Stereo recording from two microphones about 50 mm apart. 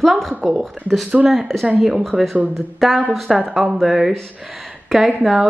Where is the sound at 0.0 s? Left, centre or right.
Centre.